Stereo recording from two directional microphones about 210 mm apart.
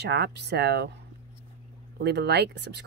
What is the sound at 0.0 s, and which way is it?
Speech, 50° right (ahead or behind).